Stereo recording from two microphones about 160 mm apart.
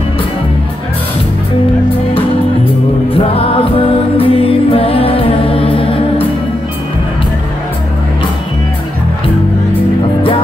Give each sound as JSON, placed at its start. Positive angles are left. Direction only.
{"t": 3.2, "sound": "music", "side_deg": 35}